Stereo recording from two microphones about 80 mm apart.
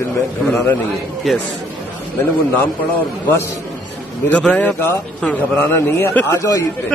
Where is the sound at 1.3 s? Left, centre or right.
Centre.